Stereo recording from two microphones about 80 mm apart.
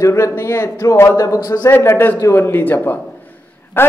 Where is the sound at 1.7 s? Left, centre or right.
Left.